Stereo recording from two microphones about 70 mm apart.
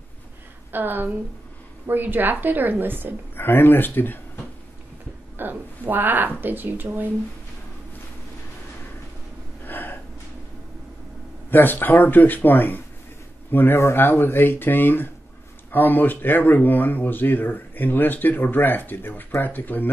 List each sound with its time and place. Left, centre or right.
0.7 s a woman's voice: right
3.3 s speech: left
5.4 s speech: right
9.7 s gasp: left
11.5 s speech: left